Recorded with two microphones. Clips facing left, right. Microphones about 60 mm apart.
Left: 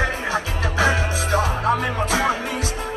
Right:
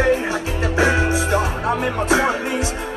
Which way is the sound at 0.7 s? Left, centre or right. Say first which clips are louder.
Right 3 dB; right.